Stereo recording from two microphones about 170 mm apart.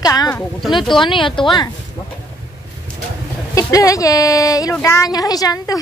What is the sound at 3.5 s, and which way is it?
Speech, 20° left (ahead or behind).